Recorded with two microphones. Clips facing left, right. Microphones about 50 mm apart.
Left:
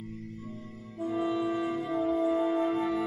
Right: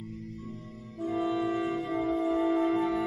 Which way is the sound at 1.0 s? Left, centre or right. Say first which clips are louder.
Even; centre.